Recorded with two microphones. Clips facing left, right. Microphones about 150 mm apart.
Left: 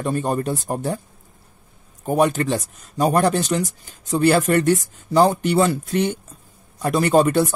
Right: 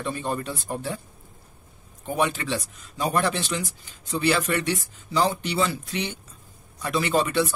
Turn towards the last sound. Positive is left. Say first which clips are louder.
# left 7 dB
turn(degrees=45)  # may be behind; listen again after turning